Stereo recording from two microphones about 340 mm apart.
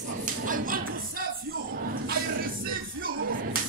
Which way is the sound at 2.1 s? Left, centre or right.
Right.